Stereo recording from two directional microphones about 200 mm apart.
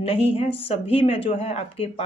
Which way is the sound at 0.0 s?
30° left (ahead or behind).